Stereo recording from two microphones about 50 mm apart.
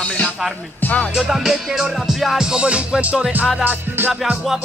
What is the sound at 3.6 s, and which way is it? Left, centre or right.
Music, right.